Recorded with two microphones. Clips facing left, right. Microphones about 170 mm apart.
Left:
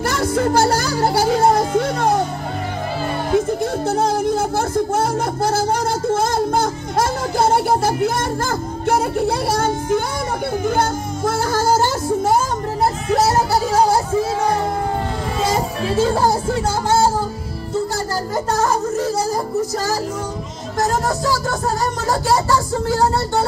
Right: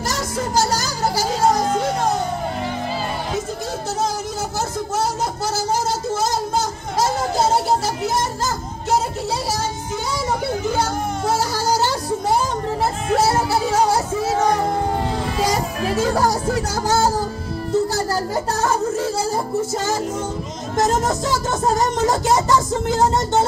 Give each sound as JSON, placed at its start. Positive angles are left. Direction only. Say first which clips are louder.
{"t": 0.0, "sound": "music", "louder": "left 6 dB", "side_deg": 55}
{"t": 4.0, "sound": "music", "louder": "left 6 dB", "side_deg": 55}
{"t": 12.8, "sound": "music", "louder": "left 2 dB", "side_deg": 40}
{"t": 15.4, "sound": "speech", "louder": "left 2 dB", "side_deg": 30}
{"t": 20.7, "sound": "speech", "louder": "right 1 dB", "side_deg": -20}